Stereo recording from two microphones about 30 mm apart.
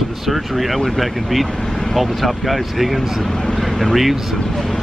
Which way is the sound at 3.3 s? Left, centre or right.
Centre.